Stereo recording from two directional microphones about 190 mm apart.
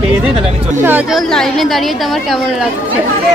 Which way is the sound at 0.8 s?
10° right (ahead or behind).